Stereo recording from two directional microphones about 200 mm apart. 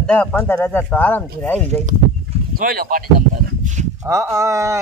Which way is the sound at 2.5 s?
45° right (ahead or behind).